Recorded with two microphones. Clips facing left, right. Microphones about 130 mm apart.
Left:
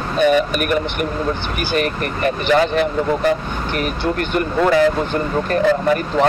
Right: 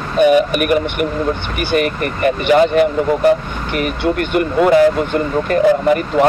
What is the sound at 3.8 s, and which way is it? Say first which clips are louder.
Speech: right 5 dB; 65° right (ahead or behind).